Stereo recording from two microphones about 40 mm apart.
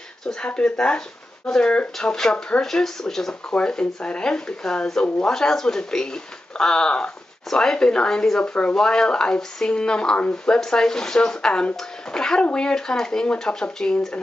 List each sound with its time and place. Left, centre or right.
0.6 s speech: left
2.0 s speech: centre
3.5 s speech: left